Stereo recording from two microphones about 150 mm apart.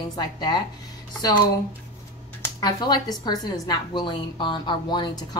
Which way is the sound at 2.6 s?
25° left (ahead or behind).